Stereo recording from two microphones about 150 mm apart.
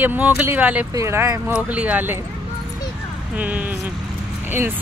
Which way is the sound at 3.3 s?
10° right (ahead or behind).